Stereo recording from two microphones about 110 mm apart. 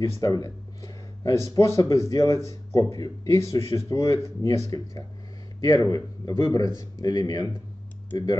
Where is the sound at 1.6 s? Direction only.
30° left (ahead or behind).